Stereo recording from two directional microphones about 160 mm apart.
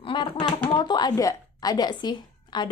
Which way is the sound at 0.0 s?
30° left (ahead or behind).